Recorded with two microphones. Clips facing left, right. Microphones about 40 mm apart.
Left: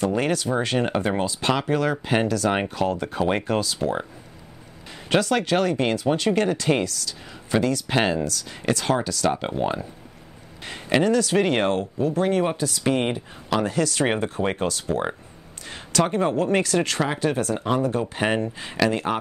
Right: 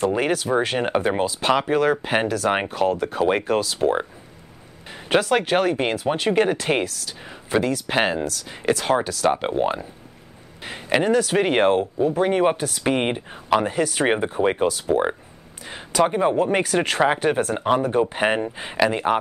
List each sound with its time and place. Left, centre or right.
0.0 s speech: centre
5.1 s speech: centre
7.5 s speech: centre
12.5 s speech: right
12.8 s speech: right
16.7 s speech: right